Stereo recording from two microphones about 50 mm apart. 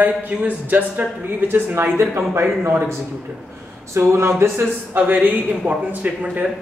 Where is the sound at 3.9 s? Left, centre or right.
Right.